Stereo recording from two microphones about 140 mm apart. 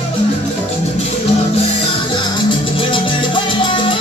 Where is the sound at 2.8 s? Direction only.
35° left (ahead or behind).